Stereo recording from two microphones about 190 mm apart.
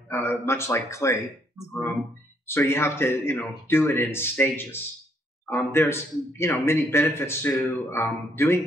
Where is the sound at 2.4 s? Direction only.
15° left (ahead or behind).